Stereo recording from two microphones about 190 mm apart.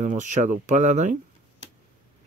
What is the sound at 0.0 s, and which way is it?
Speech, 40° right (ahead or behind).